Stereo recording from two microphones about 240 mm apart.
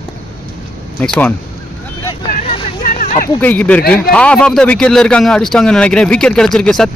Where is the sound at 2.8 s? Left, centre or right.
Left.